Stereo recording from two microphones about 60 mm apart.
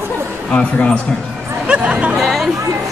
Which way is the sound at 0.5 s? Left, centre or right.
Left.